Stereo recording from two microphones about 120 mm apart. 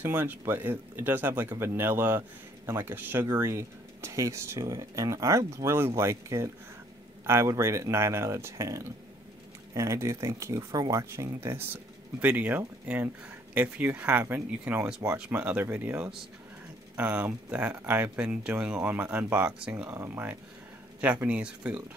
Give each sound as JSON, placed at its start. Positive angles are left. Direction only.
{"t": 0.0, "sound": "speech", "side_deg": -15}